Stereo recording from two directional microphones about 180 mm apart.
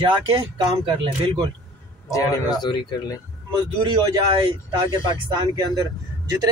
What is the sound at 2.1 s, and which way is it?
Speech, 20° left (ahead or behind).